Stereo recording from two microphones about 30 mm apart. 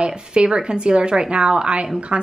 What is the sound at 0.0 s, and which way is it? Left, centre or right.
A woman's voice, right.